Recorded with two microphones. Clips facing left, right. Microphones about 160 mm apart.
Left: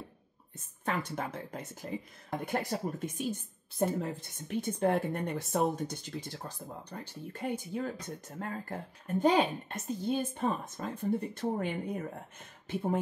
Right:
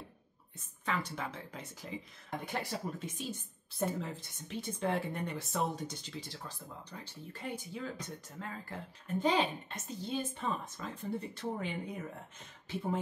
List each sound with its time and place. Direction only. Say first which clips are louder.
0.8 s speech: left 3 dB; 50° left (ahead or behind)